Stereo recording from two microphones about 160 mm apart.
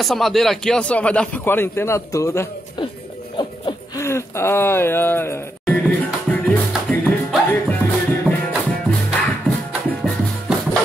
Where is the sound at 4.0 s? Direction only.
15° left (ahead or behind).